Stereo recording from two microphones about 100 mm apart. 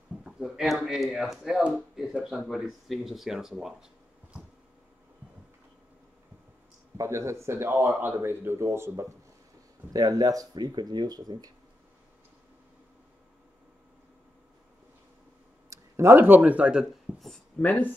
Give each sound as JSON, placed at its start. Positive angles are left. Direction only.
{"t": 0.2, "sound": "speech", "side_deg": -5}
{"t": 7.0, "sound": "speech", "side_deg": -30}
{"t": 9.9, "sound": "speech", "side_deg": -40}
{"t": 15.7, "sound": "speech", "side_deg": -25}
{"t": 17.6, "sound": "speech", "side_deg": 15}